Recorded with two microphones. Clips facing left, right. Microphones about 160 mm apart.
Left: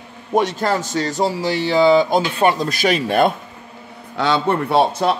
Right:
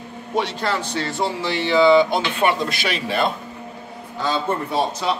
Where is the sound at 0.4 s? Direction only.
45° left (ahead or behind).